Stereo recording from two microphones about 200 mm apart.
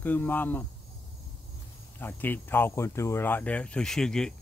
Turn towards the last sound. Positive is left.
turn(degrees=5)  # may be behind; listen again after turning